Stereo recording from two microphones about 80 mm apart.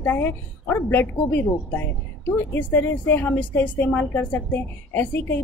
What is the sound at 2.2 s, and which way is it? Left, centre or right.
A woman's voice, left.